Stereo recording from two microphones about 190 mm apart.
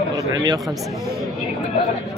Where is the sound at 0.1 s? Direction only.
20° right (ahead or behind).